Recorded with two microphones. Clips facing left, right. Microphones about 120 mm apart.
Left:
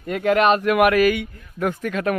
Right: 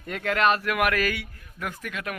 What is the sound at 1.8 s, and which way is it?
Speech, 40° left (ahead or behind).